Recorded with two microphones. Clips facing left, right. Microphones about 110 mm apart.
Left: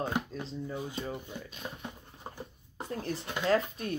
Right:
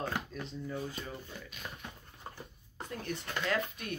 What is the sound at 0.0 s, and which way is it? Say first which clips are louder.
Speech: left 4 dB; 25° left (ahead or behind).